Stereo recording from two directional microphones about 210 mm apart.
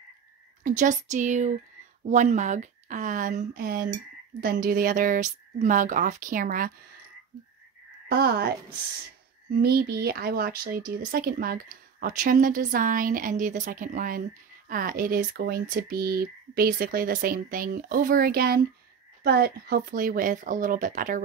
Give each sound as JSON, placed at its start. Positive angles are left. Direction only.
{"t": 0.7, "sound": "speech", "side_deg": -35}
{"t": 8.1, "sound": "speech", "side_deg": -50}
{"t": 9.6, "sound": "speech", "side_deg": -50}